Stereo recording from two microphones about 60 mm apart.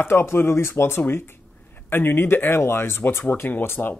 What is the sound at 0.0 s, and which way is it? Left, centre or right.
Speech, left.